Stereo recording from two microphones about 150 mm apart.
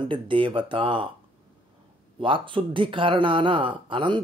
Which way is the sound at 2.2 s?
35° right (ahead or behind).